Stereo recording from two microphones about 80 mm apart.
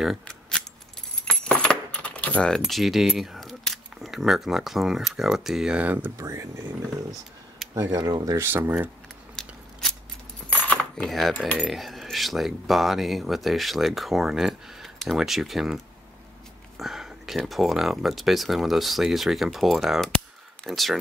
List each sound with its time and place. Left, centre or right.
1.2 s keys jangling: centre
5.8 s speech: right
6.1 s speech: right
7.1 s a sound: centre
7.7 s speech: right
8.4 s speech: right
9.3 s scissors: centre
10.5 s cutlery: centre
11.1 s speech: centre
16.7 s a sound: centre
17.4 s speech: centre